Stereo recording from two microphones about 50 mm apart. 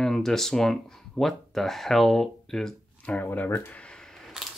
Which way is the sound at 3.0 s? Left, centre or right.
Left.